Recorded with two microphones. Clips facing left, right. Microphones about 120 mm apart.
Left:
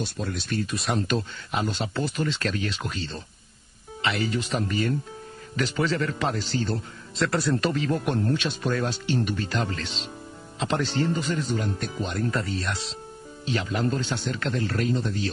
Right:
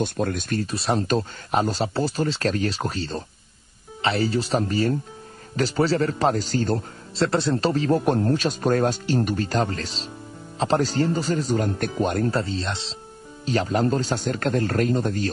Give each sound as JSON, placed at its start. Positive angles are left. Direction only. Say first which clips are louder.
{"t": 0.0, "sound": "speech", "louder": "right 6 dB", "side_deg": -50}
{"t": 7.2, "sound": "speech", "louder": "right 3 dB", "side_deg": -25}
{"t": 12.3, "sound": "speech", "louder": "right 3 dB", "side_deg": -30}
{"t": 13.5, "sound": "a man's voice", "louder": "right 5 dB", "side_deg": -40}